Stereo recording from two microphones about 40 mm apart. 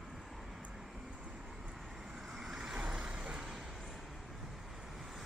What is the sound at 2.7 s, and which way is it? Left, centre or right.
Vehicle, right.